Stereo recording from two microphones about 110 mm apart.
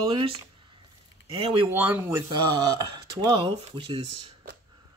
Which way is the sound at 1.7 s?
15° right (ahead or behind).